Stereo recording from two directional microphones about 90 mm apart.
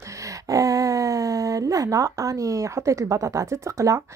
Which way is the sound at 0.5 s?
40° right (ahead or behind).